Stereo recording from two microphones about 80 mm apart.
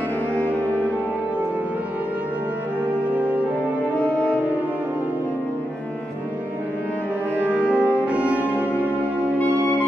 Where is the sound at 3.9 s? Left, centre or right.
Centre.